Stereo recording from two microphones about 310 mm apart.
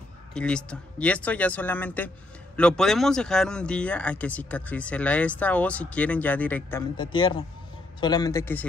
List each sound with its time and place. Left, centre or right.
0.3 s speech: centre
7.0 s a man's voice: centre